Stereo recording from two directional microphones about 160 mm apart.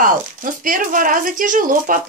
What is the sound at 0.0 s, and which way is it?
Speech, 55° right (ahead or behind).